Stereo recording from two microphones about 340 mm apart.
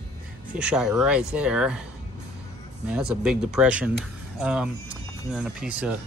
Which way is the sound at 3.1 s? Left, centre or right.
Centre.